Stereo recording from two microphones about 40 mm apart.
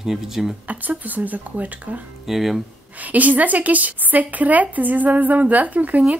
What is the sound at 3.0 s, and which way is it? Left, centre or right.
A woman's voice, right.